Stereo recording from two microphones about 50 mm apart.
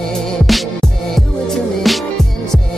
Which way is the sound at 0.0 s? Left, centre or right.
Centre.